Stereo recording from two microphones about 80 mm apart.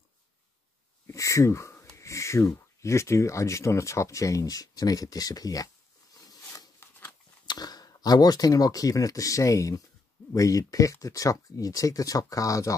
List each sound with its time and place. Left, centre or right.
1.0 s speech: left
6.2 s a sound: left
7.4 s speech: left